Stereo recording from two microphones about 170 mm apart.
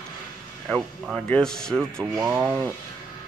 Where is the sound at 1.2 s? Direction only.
5° left (ahead or behind).